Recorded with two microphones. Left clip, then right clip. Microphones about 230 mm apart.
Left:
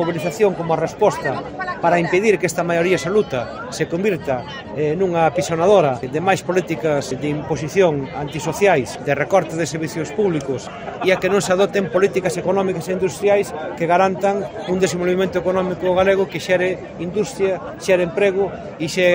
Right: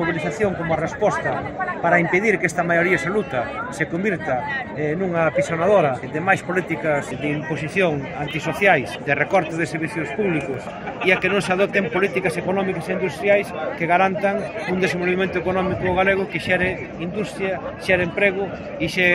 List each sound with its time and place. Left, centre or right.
0.0 s speech: left
11.1 s speech: left